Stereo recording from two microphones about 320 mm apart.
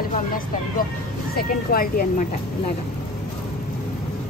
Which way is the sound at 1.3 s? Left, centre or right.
Left.